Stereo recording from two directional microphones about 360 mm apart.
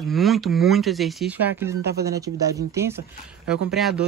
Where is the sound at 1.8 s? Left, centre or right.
Right.